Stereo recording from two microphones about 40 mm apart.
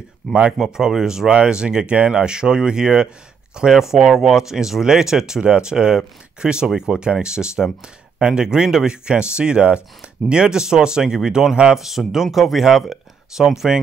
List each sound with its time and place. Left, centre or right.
0.3 s speech: centre
2.0 s speech: right
2.2 s speech: centre